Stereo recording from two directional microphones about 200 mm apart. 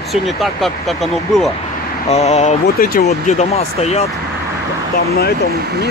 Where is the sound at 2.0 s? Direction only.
30° left (ahead or behind).